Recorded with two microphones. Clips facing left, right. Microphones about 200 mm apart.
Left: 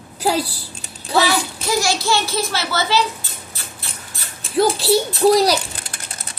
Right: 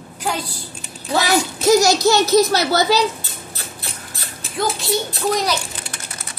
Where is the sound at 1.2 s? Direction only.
40° right (ahead or behind).